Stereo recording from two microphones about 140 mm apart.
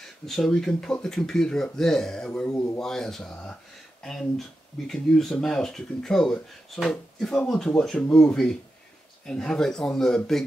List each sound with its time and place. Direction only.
0.3 s speech: centre (ahead or behind)
2.5 s a man's voice: 20° left (ahead or behind)
2.8 s speech: 5° left (ahead or behind)